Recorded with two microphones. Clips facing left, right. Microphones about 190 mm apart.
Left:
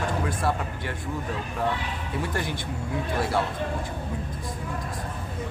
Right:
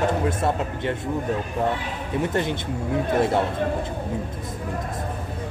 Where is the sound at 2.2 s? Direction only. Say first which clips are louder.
Right 7 dB; 20° right (ahead or behind).